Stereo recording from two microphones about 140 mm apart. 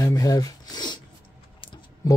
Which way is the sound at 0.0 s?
25° left (ahead or behind).